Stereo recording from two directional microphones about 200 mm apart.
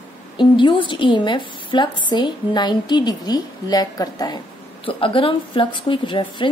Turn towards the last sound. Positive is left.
turn(degrees=25)  # may be behind; listen again after turning